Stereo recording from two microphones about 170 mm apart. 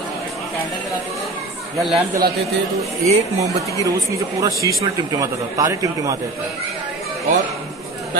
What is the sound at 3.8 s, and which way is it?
A man's voice, 20° right (ahead or behind).